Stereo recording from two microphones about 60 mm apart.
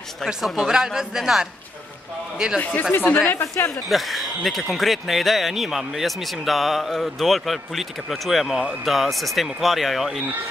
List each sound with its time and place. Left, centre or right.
0.2 s speech: centre
2.6 s speech: left
3.9 s speech: centre